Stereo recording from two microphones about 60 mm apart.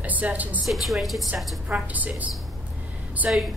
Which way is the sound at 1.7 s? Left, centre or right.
Right.